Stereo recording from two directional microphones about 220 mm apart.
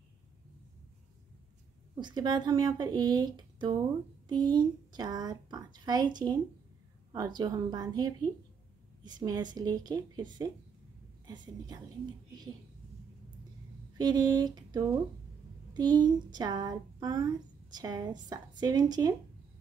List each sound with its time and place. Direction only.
2.0 s a woman's voice: 20° right (ahead or behind)
11.2 s a woman's voice: 20° right (ahead or behind)
13.9 s a woman's voice: 20° right (ahead or behind)